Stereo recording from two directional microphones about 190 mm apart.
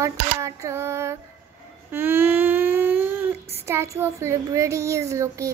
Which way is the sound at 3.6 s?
15° right (ahead or behind).